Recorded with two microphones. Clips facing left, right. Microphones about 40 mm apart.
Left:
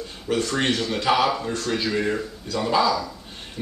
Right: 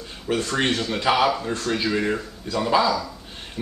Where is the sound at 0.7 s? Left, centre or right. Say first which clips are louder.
Even; centre.